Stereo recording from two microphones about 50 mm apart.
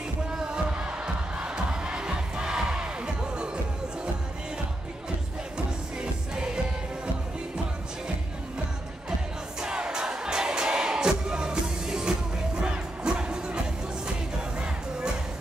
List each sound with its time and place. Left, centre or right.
0.5 s crowd: centre
5.9 s music: centre
9.6 s crowd: centre